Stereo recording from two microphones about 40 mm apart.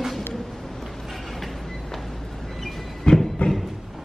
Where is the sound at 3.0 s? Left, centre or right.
Centre.